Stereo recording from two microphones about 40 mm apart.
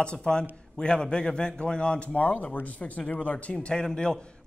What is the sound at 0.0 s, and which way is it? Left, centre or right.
Speech, left.